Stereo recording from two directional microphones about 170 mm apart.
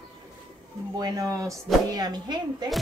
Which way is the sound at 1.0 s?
20° right (ahead or behind).